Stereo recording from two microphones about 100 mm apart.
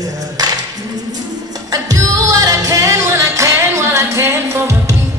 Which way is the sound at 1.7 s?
35° right (ahead or behind).